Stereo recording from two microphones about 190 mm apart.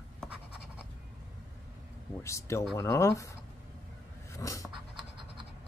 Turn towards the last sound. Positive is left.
turn(degrees=15)  # may be behind; listen again after turning